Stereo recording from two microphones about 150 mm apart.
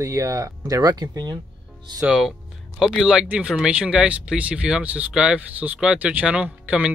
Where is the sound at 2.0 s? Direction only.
5° right (ahead or behind).